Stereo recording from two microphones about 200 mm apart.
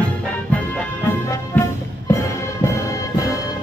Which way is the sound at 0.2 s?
5° left (ahead or behind).